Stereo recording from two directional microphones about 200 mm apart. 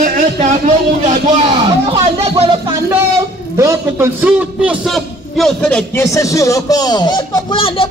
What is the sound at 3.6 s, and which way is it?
A man's voice, 15° right (ahead or behind).